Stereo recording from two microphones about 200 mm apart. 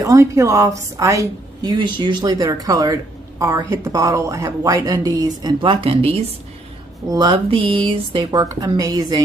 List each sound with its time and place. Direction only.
0.0 s a woman's voice: 15° right (ahead or behind)